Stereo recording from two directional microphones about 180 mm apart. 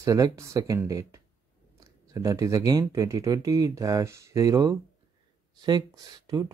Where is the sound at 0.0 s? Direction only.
20° right (ahead or behind).